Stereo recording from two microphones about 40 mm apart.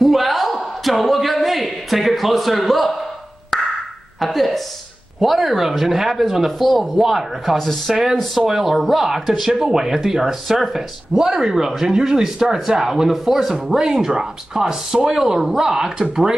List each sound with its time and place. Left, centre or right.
0.0 s a sound: centre
4.2 s speech: centre
7.5 s speech: centre
7.9 s speech: centre
9.2 s speech: centre
9.5 s speech: centre